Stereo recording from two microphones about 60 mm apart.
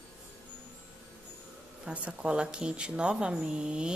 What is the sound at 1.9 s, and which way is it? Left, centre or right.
Speech, centre.